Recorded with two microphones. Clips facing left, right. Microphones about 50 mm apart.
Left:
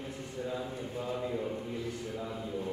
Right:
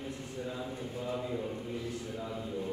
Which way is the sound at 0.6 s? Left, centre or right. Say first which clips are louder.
Left 1 dB; centre.